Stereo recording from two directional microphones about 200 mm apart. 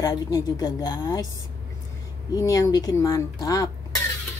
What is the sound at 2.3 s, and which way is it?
A woman's voice, 15° left (ahead or behind).